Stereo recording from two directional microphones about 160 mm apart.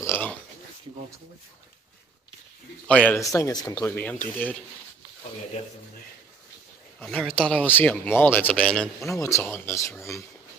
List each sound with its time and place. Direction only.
0.0 s pig: 10° left (ahead or behind)
2.9 s speech: 5° left (ahead or behind)
3.3 s speech: 20° left (ahead or behind)
3.9 s speech: 10° left (ahead or behind)
7.0 s speech: 5° left (ahead or behind)
9.2 s speech: 15° left (ahead or behind)